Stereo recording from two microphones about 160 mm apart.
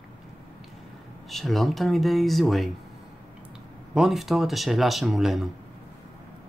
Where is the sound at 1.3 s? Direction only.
Centre (ahead or behind).